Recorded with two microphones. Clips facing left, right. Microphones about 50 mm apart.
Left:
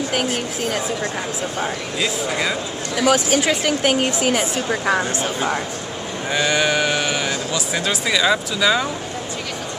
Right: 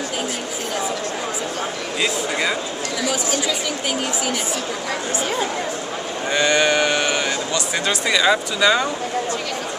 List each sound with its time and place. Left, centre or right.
2.0 s speech: centre
3.1 s a woman's voice: left
6.3 s speech: centre